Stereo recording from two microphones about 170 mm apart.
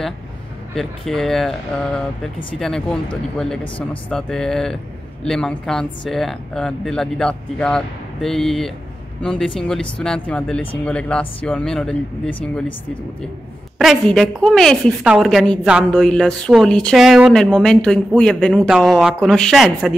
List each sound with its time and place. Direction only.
0.7 s speech: centre (ahead or behind)
2.6 s speech: 5° left (ahead or behind)
3.6 s speech: 30° left (ahead or behind)
4.1 s speech: 5° left (ahead or behind)
13.7 s speech: centre (ahead or behind)